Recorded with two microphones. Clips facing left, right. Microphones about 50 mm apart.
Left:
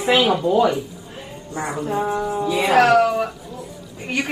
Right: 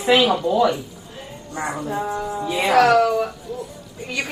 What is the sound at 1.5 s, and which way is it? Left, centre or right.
Speech, right.